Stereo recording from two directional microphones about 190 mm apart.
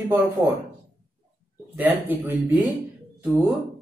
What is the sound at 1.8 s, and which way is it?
Speech, 10° right (ahead or behind).